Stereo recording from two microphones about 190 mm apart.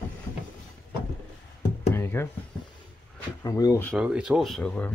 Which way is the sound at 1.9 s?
10° left (ahead or behind).